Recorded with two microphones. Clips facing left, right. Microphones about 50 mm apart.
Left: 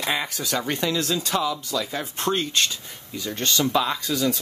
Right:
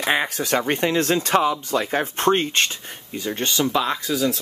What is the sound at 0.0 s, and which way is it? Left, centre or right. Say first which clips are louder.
Speech: right 5 dB; right.